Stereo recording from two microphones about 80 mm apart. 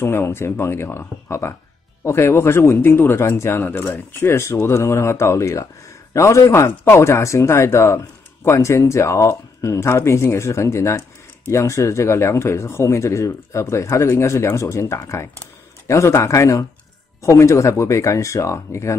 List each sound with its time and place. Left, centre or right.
0.0 s speech: left